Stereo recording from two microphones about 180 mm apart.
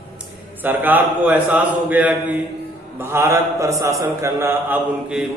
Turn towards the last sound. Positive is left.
turn(degrees=-5)  # may be behind; listen again after turning